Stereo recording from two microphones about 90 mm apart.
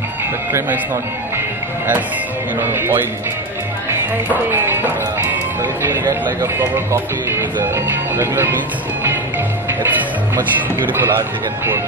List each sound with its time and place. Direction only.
0.5 s speech: 30° right (ahead or behind)
2.6 s speech: 25° right (ahead or behind)
4.3 s speech: 25° right (ahead or behind)